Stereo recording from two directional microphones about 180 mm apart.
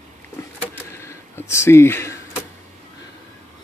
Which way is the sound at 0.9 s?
15° left (ahead or behind).